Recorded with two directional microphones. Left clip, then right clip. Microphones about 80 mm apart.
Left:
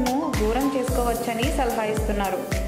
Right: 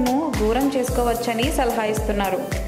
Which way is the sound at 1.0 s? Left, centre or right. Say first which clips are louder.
Right 3 dB; right.